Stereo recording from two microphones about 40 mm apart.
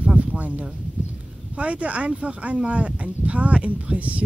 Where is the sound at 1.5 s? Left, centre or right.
Right.